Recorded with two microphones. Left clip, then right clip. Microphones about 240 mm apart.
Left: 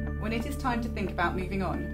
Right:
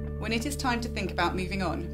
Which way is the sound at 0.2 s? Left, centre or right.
Right.